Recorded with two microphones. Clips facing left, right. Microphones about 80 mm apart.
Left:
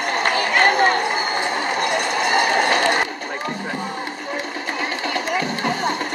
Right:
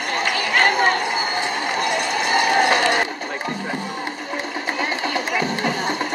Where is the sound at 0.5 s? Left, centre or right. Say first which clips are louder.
Left 1 dB; centre.